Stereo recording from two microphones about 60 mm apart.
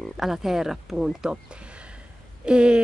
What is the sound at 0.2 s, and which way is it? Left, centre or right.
Speech, centre.